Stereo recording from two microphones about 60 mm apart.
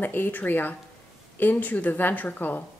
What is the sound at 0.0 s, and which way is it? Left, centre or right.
A woman's voice, left.